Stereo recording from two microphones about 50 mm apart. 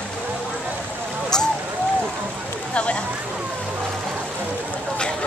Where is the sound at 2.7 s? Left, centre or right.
Left.